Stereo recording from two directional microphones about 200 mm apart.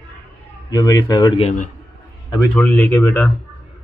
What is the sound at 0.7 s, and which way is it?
Speech, 20° left (ahead or behind).